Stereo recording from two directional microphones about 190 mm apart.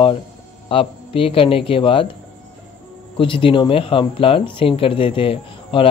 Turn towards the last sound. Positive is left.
turn(degrees=30)  # may be behind; listen again after turning